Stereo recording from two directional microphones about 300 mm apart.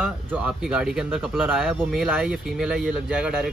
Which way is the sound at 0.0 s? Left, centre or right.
Centre.